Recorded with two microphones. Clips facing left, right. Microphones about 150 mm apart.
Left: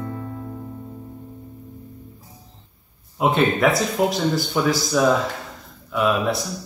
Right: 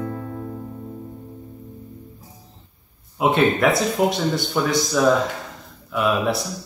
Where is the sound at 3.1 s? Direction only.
Centre (ahead or behind).